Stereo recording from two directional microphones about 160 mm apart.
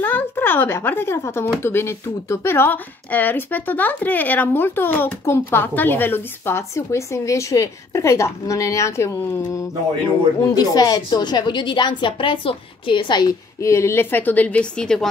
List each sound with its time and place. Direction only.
0.0 s speech: 10° left (ahead or behind)
10.4 s a woman's voice: 25° left (ahead or behind); by 15.0 s 5° left (ahead or behind)